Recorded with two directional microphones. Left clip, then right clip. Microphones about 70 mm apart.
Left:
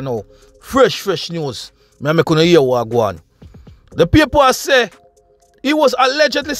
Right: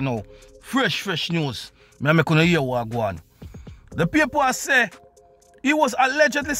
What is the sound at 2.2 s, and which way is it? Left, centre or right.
Speech, left.